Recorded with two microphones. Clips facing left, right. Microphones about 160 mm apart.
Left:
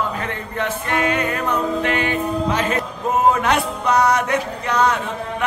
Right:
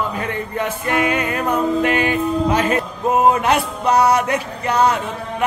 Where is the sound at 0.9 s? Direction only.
10° right (ahead or behind).